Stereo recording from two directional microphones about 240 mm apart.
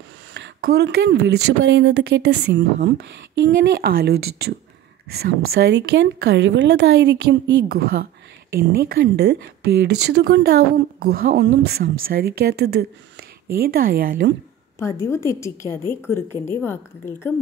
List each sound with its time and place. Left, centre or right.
0.3 s speech: right
14.8 s a woman's voice: centre